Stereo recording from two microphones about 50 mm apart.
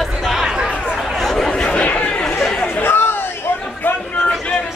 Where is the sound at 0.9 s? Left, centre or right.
Centre.